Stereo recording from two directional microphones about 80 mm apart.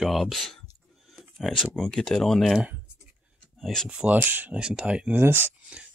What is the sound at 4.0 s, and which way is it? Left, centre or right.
Speech, right.